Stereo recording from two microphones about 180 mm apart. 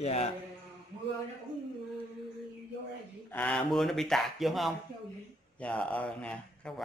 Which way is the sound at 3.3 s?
5° left (ahead or behind).